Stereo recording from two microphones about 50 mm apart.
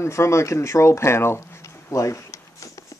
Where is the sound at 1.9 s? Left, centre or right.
Left.